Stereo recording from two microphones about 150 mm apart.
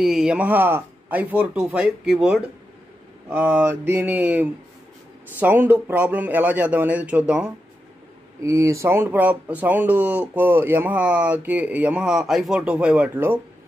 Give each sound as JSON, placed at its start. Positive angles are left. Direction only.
{"t": 0.0, "sound": "speech", "side_deg": -5}
{"t": 8.4, "sound": "speech", "side_deg": -20}